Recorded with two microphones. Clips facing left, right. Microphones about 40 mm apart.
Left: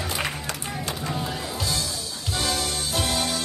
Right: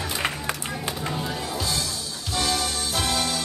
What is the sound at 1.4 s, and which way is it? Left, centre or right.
Music, centre.